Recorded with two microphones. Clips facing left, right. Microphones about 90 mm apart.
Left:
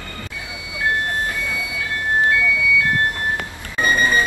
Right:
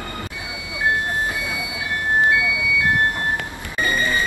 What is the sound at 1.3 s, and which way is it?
Vehicle, 15° right (ahead or behind).